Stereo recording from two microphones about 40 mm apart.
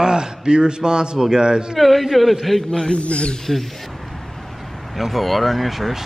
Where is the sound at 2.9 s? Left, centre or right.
Left.